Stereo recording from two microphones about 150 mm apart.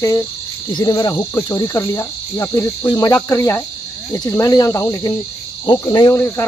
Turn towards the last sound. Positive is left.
turn(degrees=15)  # may be behind; listen again after turning